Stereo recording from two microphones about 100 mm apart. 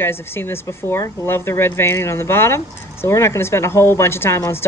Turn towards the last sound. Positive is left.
turn(degrees=25)  # may be behind; listen again after turning